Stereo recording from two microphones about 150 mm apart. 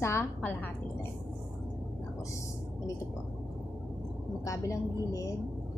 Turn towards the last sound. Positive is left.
turn(degrees=20)  # may be behind; listen again after turning